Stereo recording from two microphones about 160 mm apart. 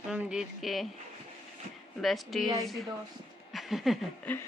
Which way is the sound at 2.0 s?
Centre (ahead or behind).